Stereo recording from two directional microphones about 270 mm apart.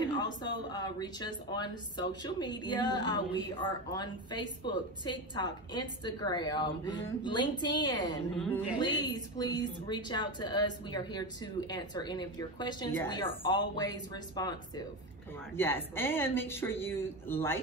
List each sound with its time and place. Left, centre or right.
0.0 s speech: centre
8.4 s a woman's voice: centre
8.7 s speech: centre